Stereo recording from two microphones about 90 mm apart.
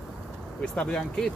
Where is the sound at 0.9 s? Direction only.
10° left (ahead or behind).